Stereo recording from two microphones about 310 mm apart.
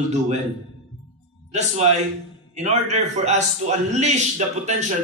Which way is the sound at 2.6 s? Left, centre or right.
Right.